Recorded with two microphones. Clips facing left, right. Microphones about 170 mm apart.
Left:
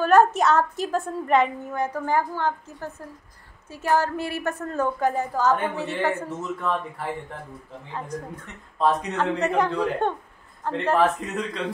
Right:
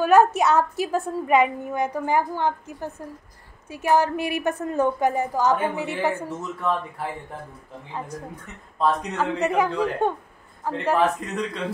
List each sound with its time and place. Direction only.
0.0 s a woman's voice: 10° right (ahead or behind)
6.1 s speech: centre (ahead or behind)
8.7 s a woman's voice: 5° right (ahead or behind)